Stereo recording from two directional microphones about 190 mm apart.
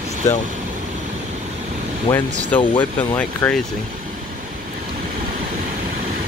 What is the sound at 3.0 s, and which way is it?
Speech, 10° left (ahead or behind).